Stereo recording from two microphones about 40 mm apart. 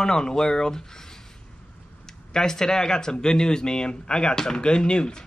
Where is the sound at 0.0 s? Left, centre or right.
Centre.